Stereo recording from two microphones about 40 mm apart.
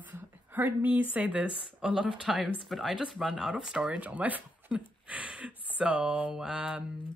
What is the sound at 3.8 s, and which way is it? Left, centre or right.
Speech, right.